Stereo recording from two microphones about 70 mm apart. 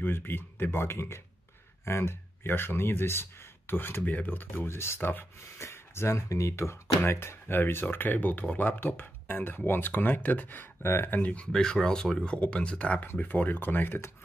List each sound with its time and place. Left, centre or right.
0.0 s speech: left